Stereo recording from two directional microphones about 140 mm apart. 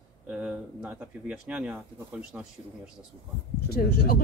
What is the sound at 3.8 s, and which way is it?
Speech, 80° left.